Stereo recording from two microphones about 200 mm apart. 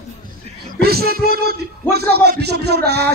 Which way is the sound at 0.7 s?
50° right (ahead or behind).